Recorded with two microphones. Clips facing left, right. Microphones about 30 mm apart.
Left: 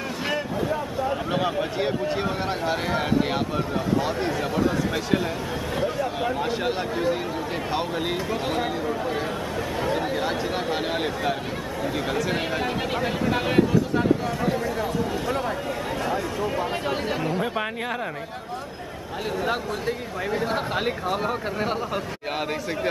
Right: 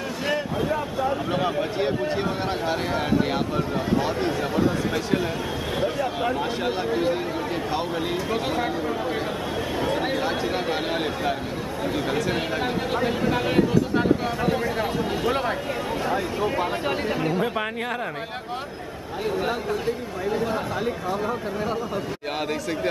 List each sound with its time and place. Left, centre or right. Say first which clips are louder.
0.6 s a sound: right 1 dB; centre
1.1 s speech: even; centre
5.8 s speech: right 1 dB; centre
7.7 s speech: left 2 dB; centre
8.5 s speech: even; centre
13.9 s speech: right 1 dB; centre
17.3 s speech: right 1 dB; centre
20.5 s speech: left 1 dB; left